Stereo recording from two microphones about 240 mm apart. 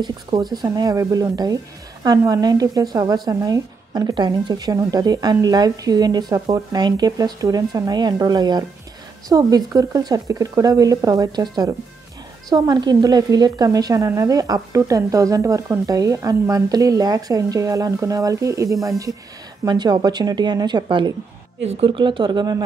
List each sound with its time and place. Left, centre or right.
0.0 s speech: centre
12.4 s speech: centre